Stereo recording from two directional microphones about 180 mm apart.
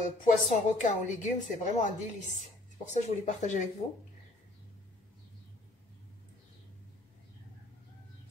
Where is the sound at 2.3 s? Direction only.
40° left (ahead or behind).